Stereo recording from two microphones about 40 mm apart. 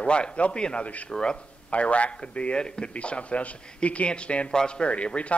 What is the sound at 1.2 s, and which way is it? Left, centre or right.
A man's voice, left.